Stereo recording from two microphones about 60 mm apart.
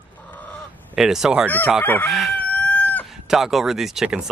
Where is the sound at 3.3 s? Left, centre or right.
Centre.